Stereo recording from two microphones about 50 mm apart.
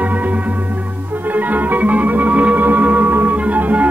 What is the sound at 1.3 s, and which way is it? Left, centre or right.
Music, right.